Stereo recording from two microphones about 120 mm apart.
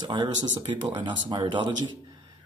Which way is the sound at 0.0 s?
40° right (ahead or behind).